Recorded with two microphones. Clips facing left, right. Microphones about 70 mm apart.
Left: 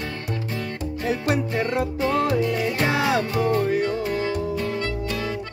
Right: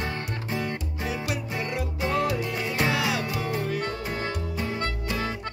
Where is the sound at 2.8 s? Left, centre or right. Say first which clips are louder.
Left 4 dB; left.